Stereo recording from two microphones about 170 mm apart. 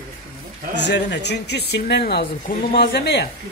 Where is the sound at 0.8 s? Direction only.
90° left.